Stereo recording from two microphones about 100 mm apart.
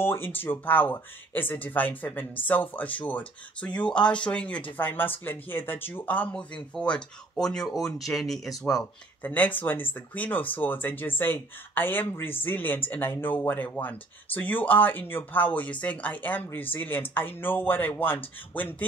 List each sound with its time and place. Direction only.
0.0 s speech: 20° left (ahead or behind); by 8.5 s centre (ahead or behind)
9.2 s speech: 15° left (ahead or behind)